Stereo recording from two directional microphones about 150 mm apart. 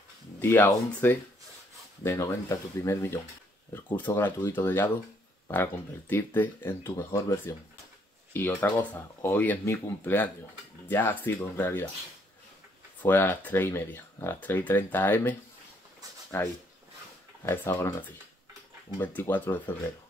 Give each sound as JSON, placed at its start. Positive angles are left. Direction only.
{"t": 0.4, "sound": "speech", "side_deg": 15}
{"t": 13.0, "sound": "speech", "side_deg": 10}
{"t": 18.9, "sound": "speech", "side_deg": 15}